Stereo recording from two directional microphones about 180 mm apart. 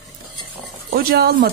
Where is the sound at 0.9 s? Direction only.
60° right (ahead or behind).